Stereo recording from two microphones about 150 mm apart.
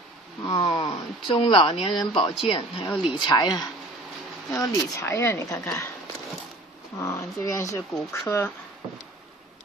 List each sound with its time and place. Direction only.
0.5 s speech: 30° left (ahead or behind)
2.9 s speech: 5° right (ahead or behind)
3.2 s speech: 30° left (ahead or behind)
7.0 s speech: 20° left (ahead or behind)